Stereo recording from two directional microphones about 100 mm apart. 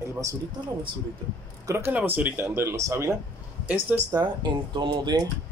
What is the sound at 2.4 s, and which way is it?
Speech, 25° right (ahead or behind).